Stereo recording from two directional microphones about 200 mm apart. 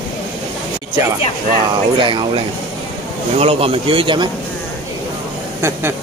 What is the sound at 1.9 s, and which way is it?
Speech, 25° right (ahead or behind).